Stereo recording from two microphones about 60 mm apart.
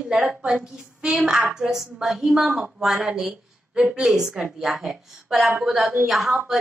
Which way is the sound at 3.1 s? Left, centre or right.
Centre.